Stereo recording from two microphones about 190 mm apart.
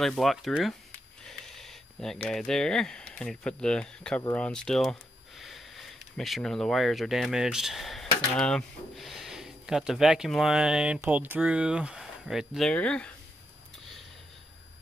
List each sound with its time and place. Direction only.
0.0 s speech: centre (ahead or behind)